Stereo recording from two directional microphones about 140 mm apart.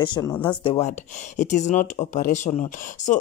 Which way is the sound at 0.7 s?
55° left (ahead or behind).